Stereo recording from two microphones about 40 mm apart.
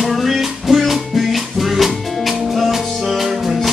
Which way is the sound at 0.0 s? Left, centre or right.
Centre.